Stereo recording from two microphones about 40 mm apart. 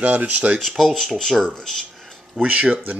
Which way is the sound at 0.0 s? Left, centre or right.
Right.